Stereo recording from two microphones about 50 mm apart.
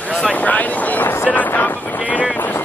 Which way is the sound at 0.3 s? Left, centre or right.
Left.